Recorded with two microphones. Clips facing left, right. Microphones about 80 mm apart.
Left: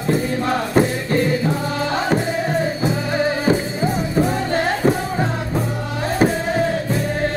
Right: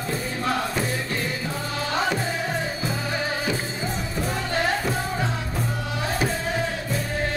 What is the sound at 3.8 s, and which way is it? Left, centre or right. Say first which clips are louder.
Music: left 9 dB; left.